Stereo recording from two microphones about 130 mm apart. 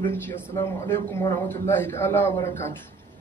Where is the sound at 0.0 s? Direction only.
15° left (ahead or behind).